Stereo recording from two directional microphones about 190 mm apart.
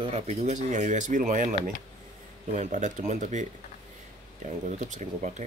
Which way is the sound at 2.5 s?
40° right (ahead or behind).